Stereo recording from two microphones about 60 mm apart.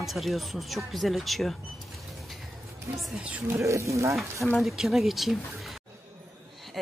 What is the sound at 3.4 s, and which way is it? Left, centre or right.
Speech, right.